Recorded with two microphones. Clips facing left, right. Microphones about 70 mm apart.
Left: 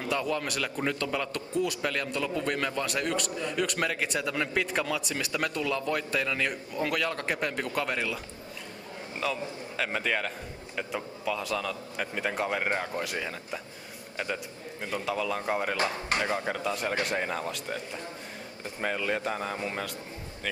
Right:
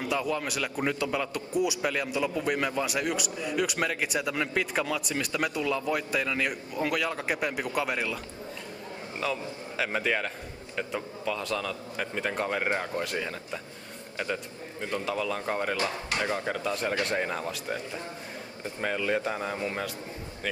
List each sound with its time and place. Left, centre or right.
0.1 s a man's voice: centre
9.2 s a man's voice: centre
15.8 s speech: left
16.4 s a man's voice: centre
18.8 s a man's voice: centre